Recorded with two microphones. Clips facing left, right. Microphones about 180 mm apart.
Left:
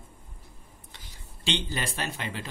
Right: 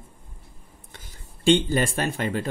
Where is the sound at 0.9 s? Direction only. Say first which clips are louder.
Right 5 dB; 50° right (ahead or behind).